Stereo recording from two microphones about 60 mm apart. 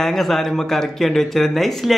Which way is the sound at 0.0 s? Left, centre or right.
Centre.